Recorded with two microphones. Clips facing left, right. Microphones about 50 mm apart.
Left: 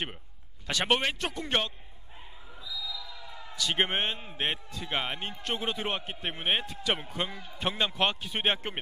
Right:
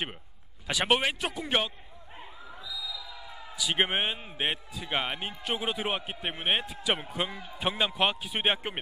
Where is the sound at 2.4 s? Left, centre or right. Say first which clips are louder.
Right 4 dB; right.